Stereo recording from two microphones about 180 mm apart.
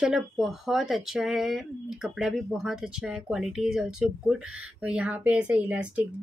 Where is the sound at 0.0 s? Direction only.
Centre (ahead or behind).